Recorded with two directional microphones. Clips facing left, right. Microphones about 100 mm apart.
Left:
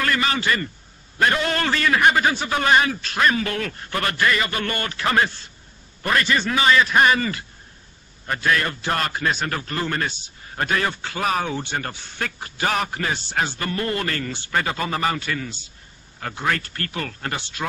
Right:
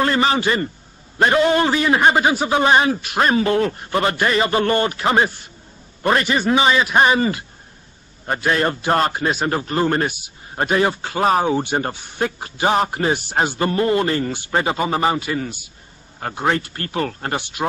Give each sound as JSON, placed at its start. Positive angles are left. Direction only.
{"t": 0.0, "sound": "a man's voice", "side_deg": -30}
{"t": 11.6, "sound": "a man's voice", "side_deg": -20}
{"t": 16.2, "sound": "a man's voice", "side_deg": -35}
{"t": 16.4, "sound": "a man's voice", "side_deg": -25}
{"t": 17.4, "sound": "speech", "side_deg": -15}